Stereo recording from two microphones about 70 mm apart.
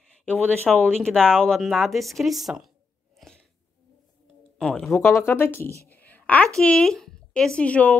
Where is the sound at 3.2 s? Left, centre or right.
Centre.